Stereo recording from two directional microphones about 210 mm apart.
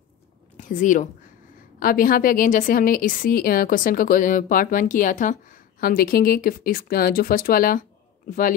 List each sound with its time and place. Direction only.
0.6 s a woman's voice: 35° left (ahead or behind)